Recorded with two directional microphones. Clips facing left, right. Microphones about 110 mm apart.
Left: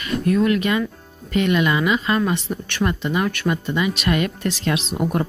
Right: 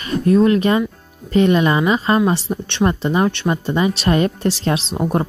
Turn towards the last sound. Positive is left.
turn(degrees=-30)  # may be behind; listen again after turning